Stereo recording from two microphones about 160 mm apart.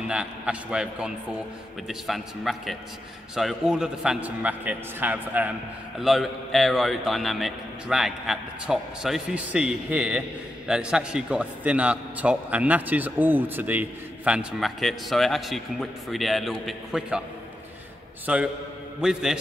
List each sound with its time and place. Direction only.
0.1 s a man's voice: 5° right (ahead or behind)
18.2 s a man's voice: 10° right (ahead or behind)